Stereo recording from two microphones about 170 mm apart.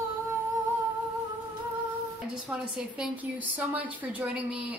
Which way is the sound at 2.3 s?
5° right (ahead or behind).